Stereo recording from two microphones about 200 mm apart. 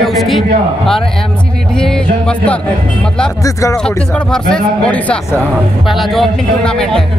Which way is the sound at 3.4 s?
15° left (ahead or behind).